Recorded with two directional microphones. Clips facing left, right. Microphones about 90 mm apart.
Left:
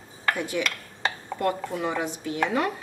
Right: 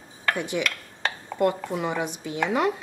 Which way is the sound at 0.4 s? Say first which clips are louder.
Right 1 dB; 20° right (ahead or behind).